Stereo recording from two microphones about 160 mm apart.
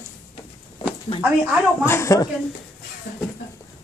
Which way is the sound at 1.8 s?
20° left (ahead or behind).